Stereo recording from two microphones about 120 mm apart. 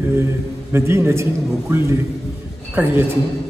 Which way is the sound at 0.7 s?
20° right (ahead or behind).